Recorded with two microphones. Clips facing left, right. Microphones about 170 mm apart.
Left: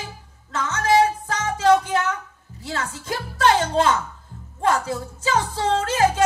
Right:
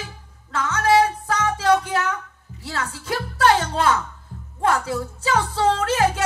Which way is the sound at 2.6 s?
30° left (ahead or behind).